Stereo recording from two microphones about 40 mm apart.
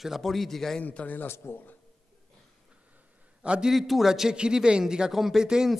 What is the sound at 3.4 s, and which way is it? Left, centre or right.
Speech, right.